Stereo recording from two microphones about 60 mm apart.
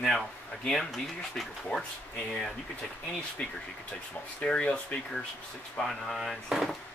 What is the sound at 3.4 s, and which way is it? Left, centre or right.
Speech, centre.